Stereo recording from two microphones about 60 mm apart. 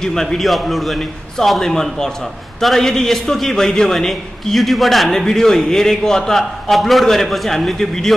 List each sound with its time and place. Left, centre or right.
0.0 s a man's voice: centre